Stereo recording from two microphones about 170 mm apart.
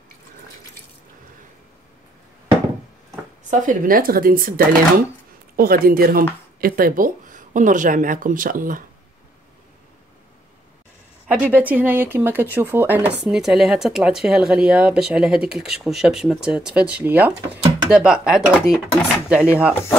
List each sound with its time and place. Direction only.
3.4 s speech: 55° right (ahead or behind)
11.2 s speech: 10° right (ahead or behind)